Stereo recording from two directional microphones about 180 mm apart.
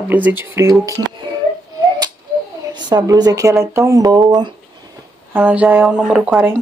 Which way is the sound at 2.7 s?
20° right (ahead or behind).